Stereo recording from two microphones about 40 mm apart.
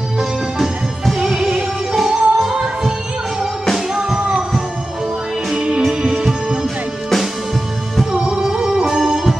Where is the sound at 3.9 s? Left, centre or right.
Centre.